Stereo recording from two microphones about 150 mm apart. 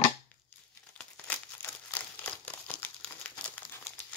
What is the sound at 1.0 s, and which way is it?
Crumpling, 10° left (ahead or behind).